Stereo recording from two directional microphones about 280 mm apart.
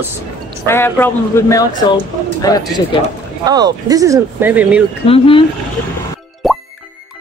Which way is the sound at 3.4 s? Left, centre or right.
Centre.